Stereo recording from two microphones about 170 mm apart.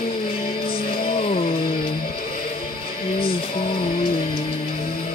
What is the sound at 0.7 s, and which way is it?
Music, 60° left (ahead or behind).